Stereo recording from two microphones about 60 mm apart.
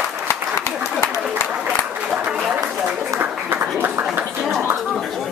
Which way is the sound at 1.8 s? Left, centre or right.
Centre.